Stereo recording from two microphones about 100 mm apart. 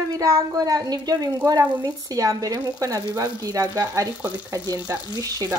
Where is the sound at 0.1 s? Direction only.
35° right (ahead or behind).